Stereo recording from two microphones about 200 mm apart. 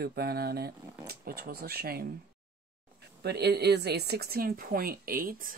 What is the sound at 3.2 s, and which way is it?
A woman's voice, 55° right (ahead or behind).